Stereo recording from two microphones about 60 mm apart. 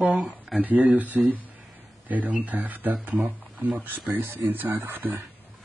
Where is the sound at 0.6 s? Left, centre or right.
Right.